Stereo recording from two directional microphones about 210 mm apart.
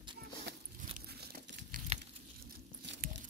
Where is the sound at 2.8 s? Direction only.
60° right (ahead or behind).